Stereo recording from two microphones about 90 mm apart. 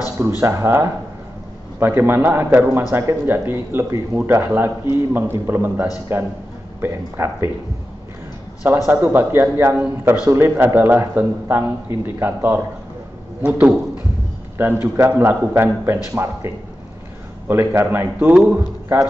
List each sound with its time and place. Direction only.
0.4 s a man's voice: 30° right (ahead or behind)
8.6 s a man's voice: 25° right (ahead or behind)